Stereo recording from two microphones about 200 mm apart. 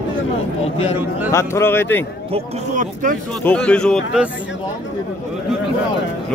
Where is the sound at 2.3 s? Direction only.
40° right (ahead or behind).